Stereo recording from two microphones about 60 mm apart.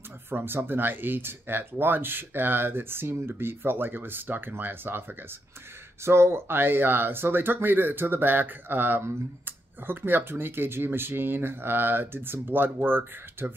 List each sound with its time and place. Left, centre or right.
0.3 s speech: right
6.0 s speech: right